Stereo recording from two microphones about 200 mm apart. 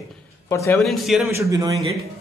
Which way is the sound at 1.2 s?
15° right (ahead or behind).